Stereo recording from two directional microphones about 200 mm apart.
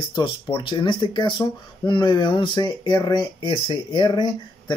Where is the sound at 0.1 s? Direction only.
25° left (ahead or behind).